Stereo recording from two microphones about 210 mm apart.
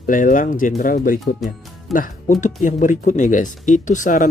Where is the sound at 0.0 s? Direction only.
40° left (ahead or behind).